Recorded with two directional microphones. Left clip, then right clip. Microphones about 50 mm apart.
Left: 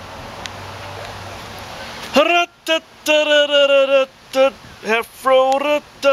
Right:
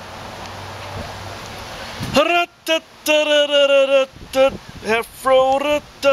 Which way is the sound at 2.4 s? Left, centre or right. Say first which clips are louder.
Left 1 dB; centre.